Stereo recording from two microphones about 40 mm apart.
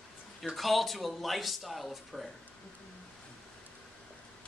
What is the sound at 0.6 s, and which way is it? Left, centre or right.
Speech, centre.